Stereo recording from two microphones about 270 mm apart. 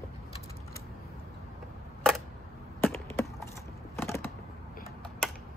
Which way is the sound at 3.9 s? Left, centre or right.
Centre.